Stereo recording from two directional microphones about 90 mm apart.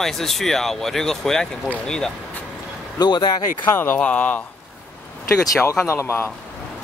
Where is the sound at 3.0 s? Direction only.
55° left (ahead or behind).